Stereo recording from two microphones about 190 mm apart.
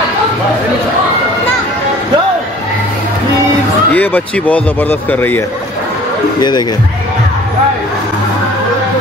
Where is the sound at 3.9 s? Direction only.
10° left (ahead or behind).